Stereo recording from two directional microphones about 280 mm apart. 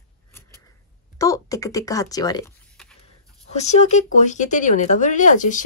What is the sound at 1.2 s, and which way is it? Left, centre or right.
Speech, centre.